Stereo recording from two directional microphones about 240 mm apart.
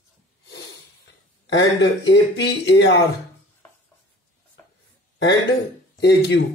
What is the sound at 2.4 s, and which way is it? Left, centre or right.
Speech, left.